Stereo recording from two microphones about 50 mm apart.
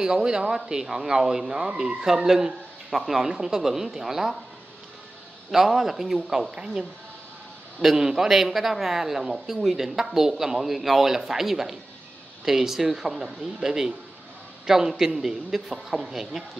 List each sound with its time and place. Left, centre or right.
0.0 s speech: centre
5.5 s speech: centre
6.5 s speech: centre